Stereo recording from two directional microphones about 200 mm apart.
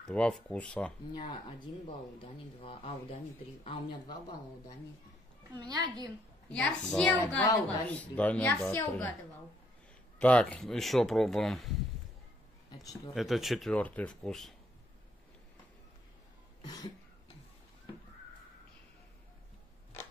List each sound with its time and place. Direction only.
0.0 s speech: 5° left (ahead or behind)
1.1 s speech: 25° left (ahead or behind)
5.6 s a woman's voice: 20° right (ahead or behind)
6.5 s a woman's voice: 5° left (ahead or behind)
10.1 s speech: 5° left (ahead or behind)
13.1 s speech: centre (ahead or behind)
16.6 s cough: 20° left (ahead or behind)